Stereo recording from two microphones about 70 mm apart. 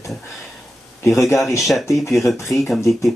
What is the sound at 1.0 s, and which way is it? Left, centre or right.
Speech, left.